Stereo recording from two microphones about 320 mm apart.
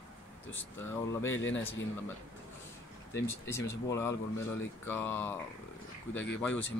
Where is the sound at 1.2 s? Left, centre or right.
Left.